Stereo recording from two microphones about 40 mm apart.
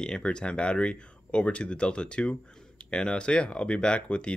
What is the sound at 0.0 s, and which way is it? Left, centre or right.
Speech, left.